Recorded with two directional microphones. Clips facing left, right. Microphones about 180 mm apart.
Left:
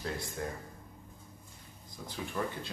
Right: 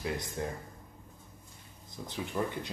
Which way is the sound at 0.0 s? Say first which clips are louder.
Right 2 dB; 20° right (ahead or behind).